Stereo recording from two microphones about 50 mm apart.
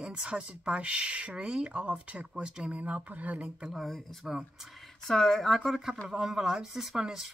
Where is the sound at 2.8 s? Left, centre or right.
Right.